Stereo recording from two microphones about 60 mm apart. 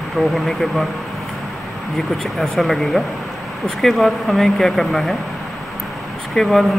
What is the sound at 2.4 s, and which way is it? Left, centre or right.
Speech, centre.